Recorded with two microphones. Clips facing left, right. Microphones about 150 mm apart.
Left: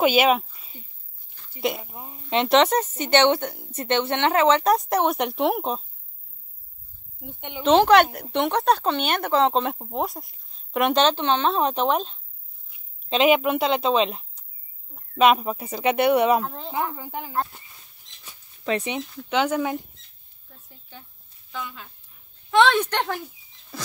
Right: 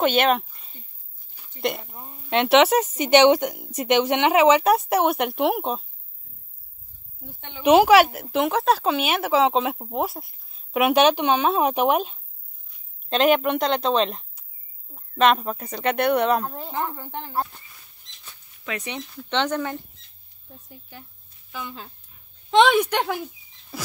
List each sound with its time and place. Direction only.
0.0 s speech: 5° left (ahead or behind)
7.2 s speech: 15° left (ahead or behind)
7.6 s speech: 10° right (ahead or behind)
12.6 s speech: 5° left (ahead or behind)
18.6 s speech: 30° left (ahead or behind)
19.0 s speech: 5° left (ahead or behind)
21.6 s speech: 35° right (ahead or behind)
22.5 s a woman's voice: 15° right (ahead or behind)
23.7 s mouse: 5° right (ahead or behind)